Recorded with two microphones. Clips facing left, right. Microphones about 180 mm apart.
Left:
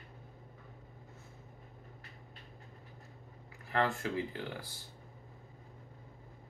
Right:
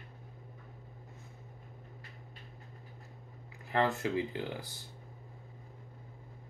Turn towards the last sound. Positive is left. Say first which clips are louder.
# right 3 dB
turn(degrees=-20)  # may be behind; listen again after turning